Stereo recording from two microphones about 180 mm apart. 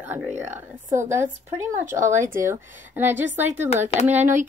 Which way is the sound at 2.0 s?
45° right (ahead or behind).